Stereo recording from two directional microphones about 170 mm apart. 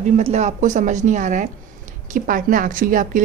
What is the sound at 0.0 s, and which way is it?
A woman's voice, 40° right (ahead or behind).